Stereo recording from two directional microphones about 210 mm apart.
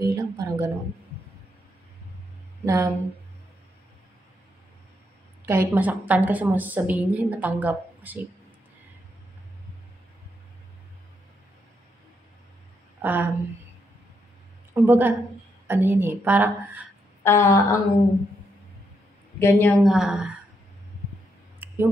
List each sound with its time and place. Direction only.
0.0 s a sound: 15° right (ahead or behind)
2.6 s a woman's voice: 15° right (ahead or behind)
5.4 s a woman's voice: 10° right (ahead or behind)
13.0 s a woman's voice: 10° right (ahead or behind)
14.7 s a woman's voice: 10° right (ahead or behind)
17.2 s a sound: 10° left (ahead or behind)
19.4 s a woman's voice: 10° left (ahead or behind)
19.8 s a woman's voice: centre (ahead or behind)
21.6 s a sound: 10° right (ahead or behind)